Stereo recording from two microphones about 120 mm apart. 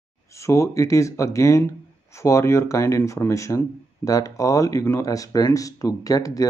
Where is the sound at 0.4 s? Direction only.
25° left (ahead or behind).